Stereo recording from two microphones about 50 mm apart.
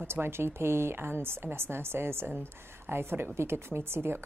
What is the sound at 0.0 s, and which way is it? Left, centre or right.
A woman's voice, right.